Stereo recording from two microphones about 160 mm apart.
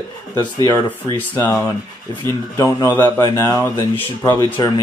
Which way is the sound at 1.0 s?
15° left (ahead or behind).